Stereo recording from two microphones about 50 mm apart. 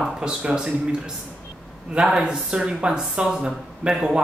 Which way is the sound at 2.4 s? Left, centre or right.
Centre.